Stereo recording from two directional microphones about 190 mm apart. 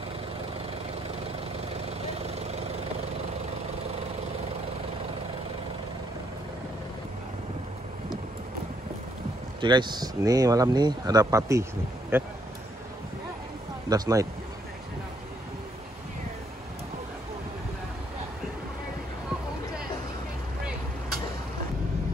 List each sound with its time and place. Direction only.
2.0 s vehicle: 35° right (ahead or behind)
9.6 s speech: 25° right (ahead or behind)
13.8 s speech: 20° right (ahead or behind)